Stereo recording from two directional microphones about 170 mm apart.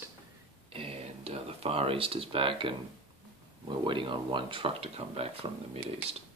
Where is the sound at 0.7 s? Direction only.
35° right (ahead or behind).